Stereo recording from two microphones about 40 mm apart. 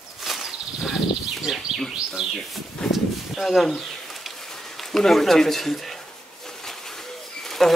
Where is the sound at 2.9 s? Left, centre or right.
Centre.